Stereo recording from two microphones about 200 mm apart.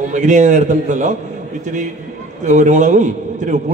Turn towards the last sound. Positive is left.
turn(degrees=-40)  # may be behind; listen again after turning